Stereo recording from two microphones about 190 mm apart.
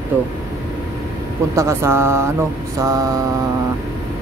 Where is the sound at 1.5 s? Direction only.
15° right (ahead or behind).